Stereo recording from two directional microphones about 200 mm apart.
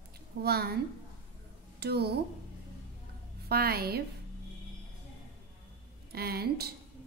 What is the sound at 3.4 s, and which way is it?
Speech, 50° right (ahead or behind).